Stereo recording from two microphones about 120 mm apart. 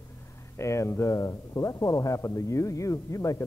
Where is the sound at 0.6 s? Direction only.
25° left (ahead or behind).